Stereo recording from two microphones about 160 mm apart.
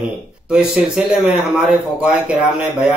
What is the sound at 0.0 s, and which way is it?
Speech, 5° right (ahead or behind).